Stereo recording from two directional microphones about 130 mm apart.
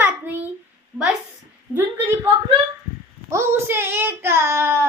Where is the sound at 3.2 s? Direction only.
20° right (ahead or behind).